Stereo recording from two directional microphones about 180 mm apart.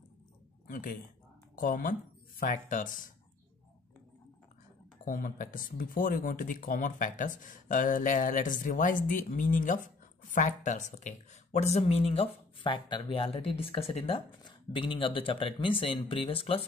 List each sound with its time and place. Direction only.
0.7 s speech: 50° left (ahead or behind)
5.0 s speech: 50° left (ahead or behind); by 16.6 s 30° left (ahead or behind)